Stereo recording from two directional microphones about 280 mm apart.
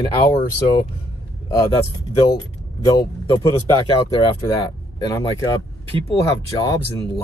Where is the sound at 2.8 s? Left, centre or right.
Centre.